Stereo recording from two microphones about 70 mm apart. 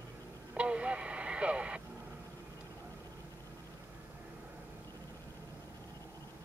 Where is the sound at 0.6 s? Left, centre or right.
Centre.